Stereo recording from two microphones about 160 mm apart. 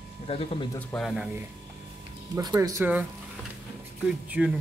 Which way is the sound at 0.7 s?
Centre (ahead or behind).